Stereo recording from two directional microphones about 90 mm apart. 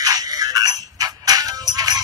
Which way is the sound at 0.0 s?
45° right (ahead or behind).